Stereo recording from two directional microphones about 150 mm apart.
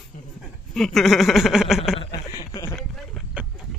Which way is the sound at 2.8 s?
5° left (ahead or behind).